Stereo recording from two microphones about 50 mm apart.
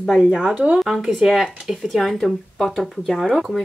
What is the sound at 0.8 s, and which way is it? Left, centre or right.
Speech, centre.